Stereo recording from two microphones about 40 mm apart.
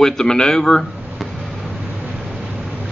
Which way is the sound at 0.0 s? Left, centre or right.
Centre.